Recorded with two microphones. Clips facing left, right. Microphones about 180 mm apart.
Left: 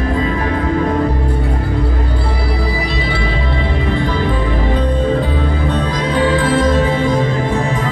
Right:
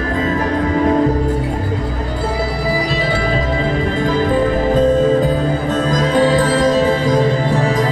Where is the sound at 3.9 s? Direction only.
40° right (ahead or behind).